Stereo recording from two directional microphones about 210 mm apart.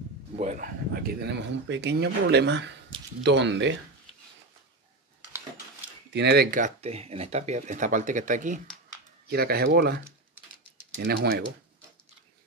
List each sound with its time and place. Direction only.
0.4 s speech: 35° right (ahead or behind); by 3.7 s 55° right (ahead or behind)
5.8 s speech: 50° right (ahead or behind)